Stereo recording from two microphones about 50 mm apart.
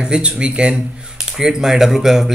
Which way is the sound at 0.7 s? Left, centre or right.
Centre.